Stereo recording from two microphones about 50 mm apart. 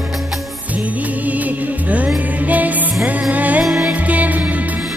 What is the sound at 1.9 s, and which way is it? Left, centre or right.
Music, right.